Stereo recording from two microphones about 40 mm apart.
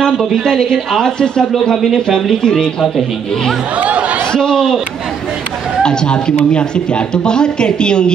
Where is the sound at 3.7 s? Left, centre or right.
Right.